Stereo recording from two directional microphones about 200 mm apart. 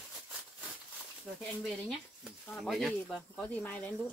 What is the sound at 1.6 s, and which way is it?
Speech, centre (ahead or behind).